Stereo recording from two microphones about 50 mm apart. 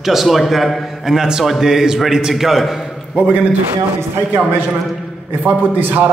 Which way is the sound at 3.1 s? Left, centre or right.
Right.